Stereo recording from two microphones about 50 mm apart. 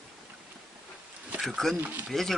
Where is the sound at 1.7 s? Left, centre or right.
Right.